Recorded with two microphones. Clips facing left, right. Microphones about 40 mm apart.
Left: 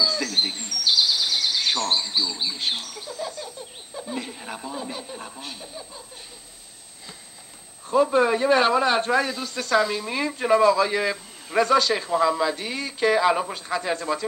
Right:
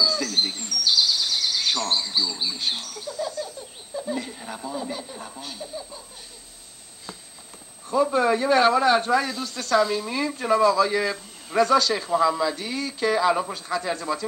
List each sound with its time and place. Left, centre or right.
0.0 s bird: centre
4.1 s a man's voice: centre
7.9 s a man's voice: left
9.3 s a man's voice: centre